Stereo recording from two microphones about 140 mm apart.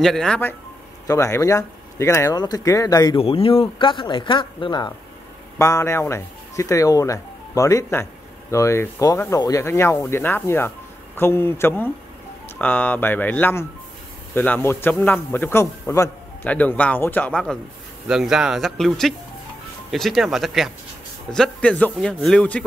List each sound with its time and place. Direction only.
0.0 s speech: 5° left (ahead or behind)
1.0 s speech: 20° left (ahead or behind)
3.2 s speech: 40° left (ahead or behind)
5.6 s a man's voice: 20° left (ahead or behind)
16.4 s a man's voice: 10° left (ahead or behind)
21.4 s a man's voice: 10° left (ahead or behind)